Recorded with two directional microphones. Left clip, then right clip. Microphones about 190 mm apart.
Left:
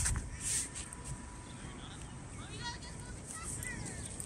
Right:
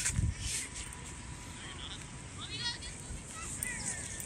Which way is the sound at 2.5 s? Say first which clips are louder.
Right 6 dB; 45° left (ahead or behind).